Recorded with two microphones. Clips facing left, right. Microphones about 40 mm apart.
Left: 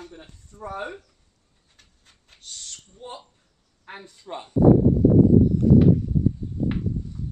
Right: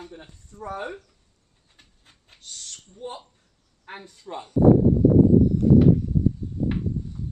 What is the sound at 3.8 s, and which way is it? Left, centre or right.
Speech, centre.